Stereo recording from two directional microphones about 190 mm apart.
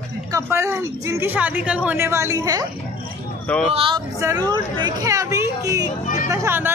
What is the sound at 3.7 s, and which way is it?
Speech, 30° right (ahead or behind).